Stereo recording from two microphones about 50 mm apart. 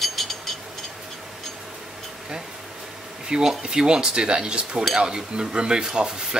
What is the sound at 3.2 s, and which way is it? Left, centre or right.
Speech, centre.